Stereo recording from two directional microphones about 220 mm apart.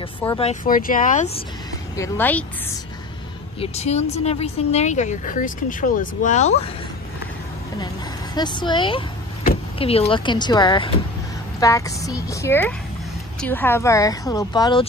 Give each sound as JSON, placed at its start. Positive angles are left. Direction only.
{"t": 0.4, "sound": "speech", "side_deg": 35}
{"t": 2.0, "sound": "speech", "side_deg": 10}
{"t": 3.5, "sound": "a woman's voice", "side_deg": 30}
{"t": 8.4, "sound": "a woman's voice", "side_deg": 20}